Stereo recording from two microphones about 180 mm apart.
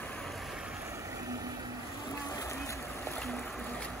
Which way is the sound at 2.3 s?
15° left (ahead or behind).